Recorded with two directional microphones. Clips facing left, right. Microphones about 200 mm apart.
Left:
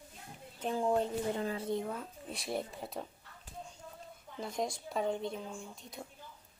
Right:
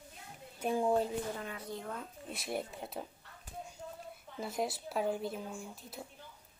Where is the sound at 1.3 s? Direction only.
30° left (ahead or behind).